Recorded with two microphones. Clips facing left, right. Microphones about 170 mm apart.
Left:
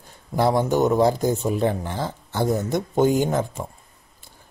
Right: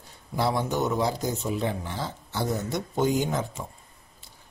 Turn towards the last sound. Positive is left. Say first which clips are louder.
# left 5 dB
turn(degrees=50)  # may be behind; listen again after turning